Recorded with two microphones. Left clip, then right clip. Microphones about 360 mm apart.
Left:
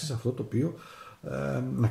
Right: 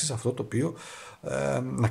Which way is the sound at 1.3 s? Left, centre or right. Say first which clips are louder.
Right 5 dB; centre.